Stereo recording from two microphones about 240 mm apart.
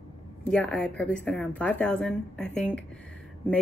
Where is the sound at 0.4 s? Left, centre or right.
Centre.